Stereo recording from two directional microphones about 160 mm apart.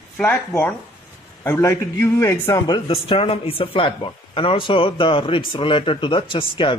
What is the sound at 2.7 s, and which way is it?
Speech, 35° left (ahead or behind).